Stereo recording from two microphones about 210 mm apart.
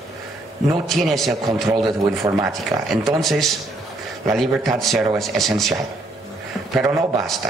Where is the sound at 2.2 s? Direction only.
20° right (ahead or behind).